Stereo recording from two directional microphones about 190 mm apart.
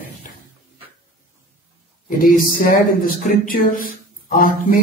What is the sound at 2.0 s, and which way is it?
Speech, 45° left (ahead or behind).